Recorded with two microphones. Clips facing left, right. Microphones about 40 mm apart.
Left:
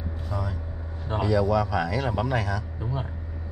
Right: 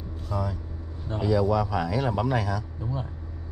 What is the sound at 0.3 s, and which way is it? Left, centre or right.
Vehicle, centre.